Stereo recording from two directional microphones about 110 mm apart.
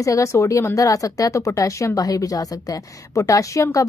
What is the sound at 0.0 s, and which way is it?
A woman's voice, 30° left (ahead or behind).